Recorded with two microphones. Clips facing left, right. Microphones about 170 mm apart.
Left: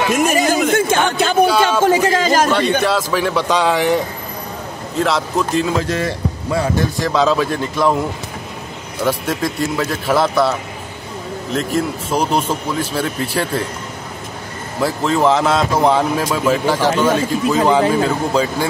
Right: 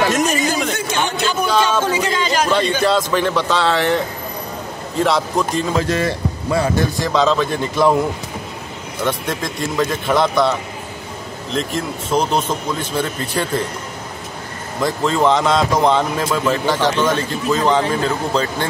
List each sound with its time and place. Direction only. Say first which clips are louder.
0.3 s a sound: left 5 dB; 50° left (ahead or behind)
1.4 s a sound: left 4 dB; 10° left (ahead or behind)
1.9 s a sound: left 5 dB; 45° left (ahead or behind)
2.8 s speech: right 1 dB; 5° left (ahead or behind)
4.9 s a man's voice: even; centre (ahead or behind)
7.1 s a man's voice: left 1 dB; 5° left (ahead or behind)
9.0 s a man's voice: left 3 dB; 5° left (ahead or behind)
11.5 s speech: left 3 dB; 5° left (ahead or behind)
14.8 s speech: left 1 dB; 5° left (ahead or behind)